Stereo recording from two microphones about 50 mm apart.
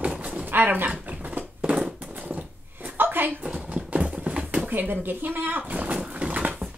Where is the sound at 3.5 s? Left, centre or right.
Right.